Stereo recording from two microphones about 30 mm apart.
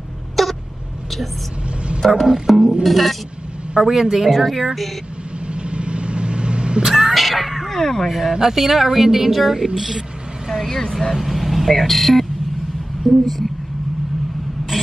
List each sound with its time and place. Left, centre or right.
0.4 s a sound: centre
2.0 s music: centre
2.4 s a woman's voice: centre
3.8 s a woman's voice: centre
5.5 s vehicle: right
6.8 s a sound: centre
7.7 s speech: centre
8.1 s speech: centre
10.7 s speech: centre
11.1 s a woman's voice: centre